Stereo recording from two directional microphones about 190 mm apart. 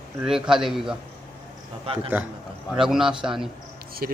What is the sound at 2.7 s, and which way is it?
Speech, 5° right (ahead or behind).